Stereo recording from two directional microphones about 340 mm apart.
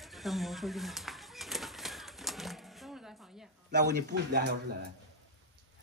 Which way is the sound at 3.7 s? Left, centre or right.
Right.